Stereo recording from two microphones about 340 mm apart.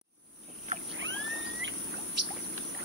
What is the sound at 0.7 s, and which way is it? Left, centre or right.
Boat, right.